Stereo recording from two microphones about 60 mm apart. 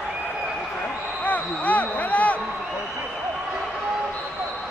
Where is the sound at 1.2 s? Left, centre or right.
Left.